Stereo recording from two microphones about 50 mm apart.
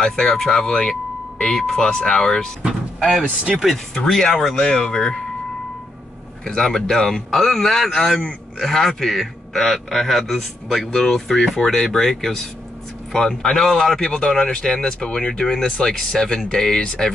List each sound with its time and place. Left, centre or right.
0.0 s speech: centre
2.6 s door: centre
3.3 s speech: right
3.6 s a man's voice: centre
6.4 s a man's voice: centre